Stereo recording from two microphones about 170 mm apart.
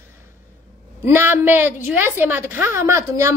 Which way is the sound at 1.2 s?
10° right (ahead or behind).